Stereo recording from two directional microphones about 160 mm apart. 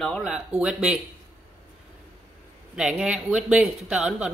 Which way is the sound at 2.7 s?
5° right (ahead or behind).